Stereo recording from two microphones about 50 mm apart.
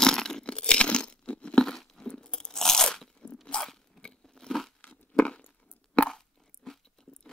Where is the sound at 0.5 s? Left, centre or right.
Centre.